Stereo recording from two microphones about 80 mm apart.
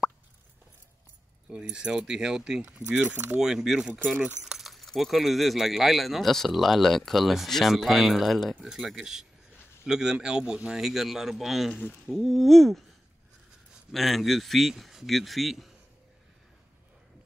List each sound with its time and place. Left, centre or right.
1.5 s speech: centre
3.1 s speech: right
3.3 s speech: centre
13.9 s speech: centre